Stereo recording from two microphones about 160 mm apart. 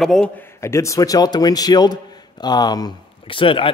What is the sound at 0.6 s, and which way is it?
A man's voice, 20° left (ahead or behind).